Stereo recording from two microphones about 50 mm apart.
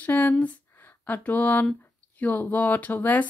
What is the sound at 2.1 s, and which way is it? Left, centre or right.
Speech, left.